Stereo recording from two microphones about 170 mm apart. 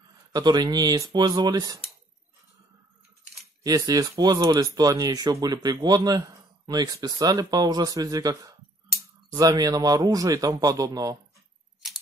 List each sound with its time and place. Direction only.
0.3 s speech: 25° right (ahead or behind)
3.6 s speech: 20° right (ahead or behind)